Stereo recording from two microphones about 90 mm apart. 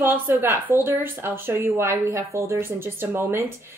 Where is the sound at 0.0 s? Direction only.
25° right (ahead or behind).